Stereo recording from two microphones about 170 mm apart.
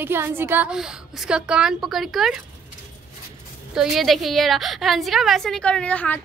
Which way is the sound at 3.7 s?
5° right (ahead or behind).